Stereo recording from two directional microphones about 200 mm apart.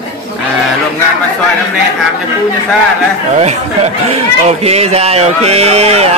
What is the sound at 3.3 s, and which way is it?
Speech, 35° right (ahead or behind).